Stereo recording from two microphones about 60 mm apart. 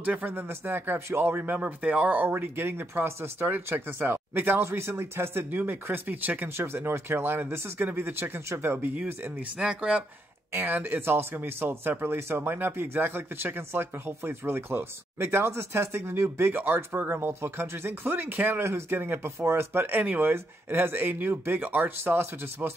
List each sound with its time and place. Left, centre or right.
0.0 s speech: right
2.1 s speech: right
4.6 s speech: right
5.6 s speech: right
6.5 s speech: right
8.8 s speech: right
9.6 s speech: centre
10.5 s speech: right
20.0 s speech: right